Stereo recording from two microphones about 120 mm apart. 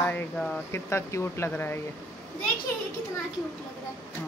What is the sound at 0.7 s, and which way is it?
Speech, 20° left (ahead or behind).